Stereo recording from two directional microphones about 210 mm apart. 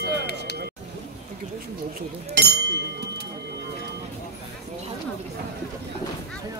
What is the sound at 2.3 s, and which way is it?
Speech, 50° right (ahead or behind).